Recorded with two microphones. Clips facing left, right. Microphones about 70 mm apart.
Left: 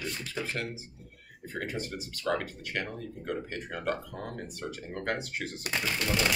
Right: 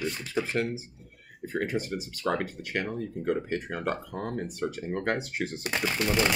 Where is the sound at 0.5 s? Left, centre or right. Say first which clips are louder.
Right 7 dB; right.